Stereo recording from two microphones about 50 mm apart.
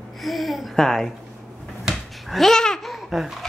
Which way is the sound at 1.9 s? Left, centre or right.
Centre.